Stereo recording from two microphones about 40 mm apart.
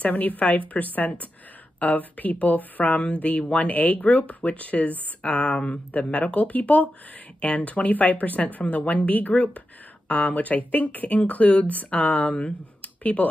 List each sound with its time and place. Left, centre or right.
0.0 s speech: left